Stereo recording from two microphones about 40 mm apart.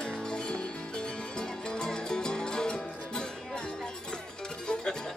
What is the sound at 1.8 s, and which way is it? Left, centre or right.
Music, centre.